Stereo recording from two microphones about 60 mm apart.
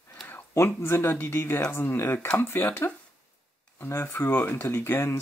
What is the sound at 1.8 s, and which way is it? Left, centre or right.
Speech, left.